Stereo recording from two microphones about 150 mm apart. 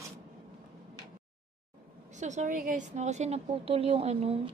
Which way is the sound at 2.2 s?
55° right (ahead or behind).